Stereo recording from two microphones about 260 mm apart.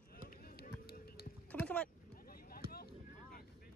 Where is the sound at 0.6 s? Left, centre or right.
Left.